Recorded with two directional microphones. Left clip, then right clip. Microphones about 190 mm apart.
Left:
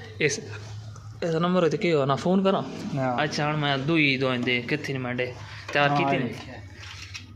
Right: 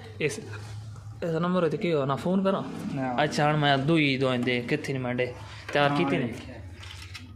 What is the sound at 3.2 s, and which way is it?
A man's voice, 20° right (ahead or behind).